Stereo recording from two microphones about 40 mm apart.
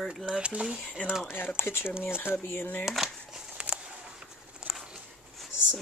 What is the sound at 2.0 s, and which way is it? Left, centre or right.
Speech, left.